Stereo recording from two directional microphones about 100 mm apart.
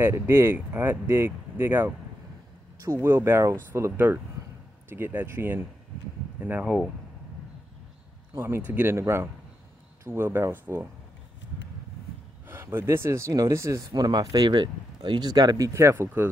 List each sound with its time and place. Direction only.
0.0 s speech: 25° right (ahead or behind)
6.6 s speech: 5° right (ahead or behind)
8.4 s speech: 20° right (ahead or behind)
12.4 s speech: 20° right (ahead or behind)